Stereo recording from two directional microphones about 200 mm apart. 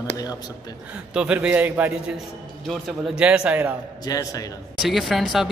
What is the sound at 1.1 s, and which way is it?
Speech, 5° right (ahead or behind).